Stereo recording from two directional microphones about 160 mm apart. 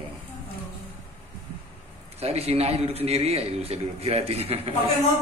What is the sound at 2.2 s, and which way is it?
A man's voice, 40° right (ahead or behind).